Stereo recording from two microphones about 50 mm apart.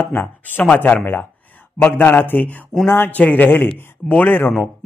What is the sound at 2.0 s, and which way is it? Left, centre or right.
Speech, left.